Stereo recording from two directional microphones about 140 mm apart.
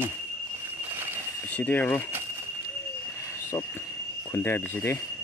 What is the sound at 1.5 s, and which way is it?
Speech, 10° left (ahead or behind).